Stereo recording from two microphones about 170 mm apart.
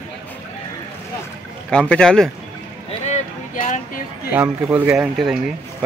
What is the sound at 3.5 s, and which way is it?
Speech, 50° left (ahead or behind).